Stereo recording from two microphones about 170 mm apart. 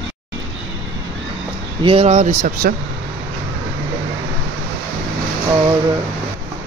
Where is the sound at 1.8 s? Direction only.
35° right (ahead or behind).